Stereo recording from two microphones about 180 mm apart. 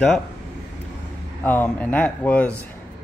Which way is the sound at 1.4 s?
10° left (ahead or behind).